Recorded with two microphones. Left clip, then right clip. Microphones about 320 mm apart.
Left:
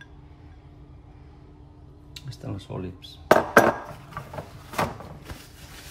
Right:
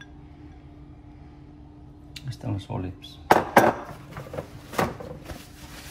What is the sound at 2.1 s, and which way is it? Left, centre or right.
Speech, centre.